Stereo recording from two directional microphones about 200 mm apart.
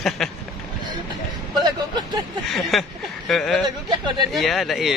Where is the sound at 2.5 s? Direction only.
Centre (ahead or behind).